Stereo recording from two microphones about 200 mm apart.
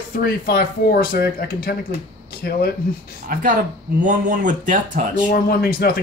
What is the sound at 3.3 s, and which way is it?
Speech, 45° right (ahead or behind).